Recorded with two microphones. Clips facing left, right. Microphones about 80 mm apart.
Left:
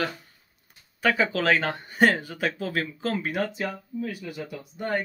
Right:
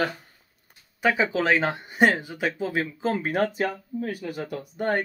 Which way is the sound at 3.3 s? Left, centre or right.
Right.